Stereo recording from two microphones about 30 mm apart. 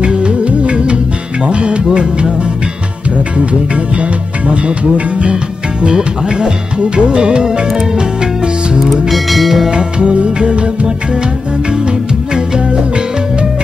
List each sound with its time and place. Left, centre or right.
0.0 s music: right
3.3 s music: right
7.6 s music: centre
9.1 s music: centre
9.7 s music: right
12.4 s music: right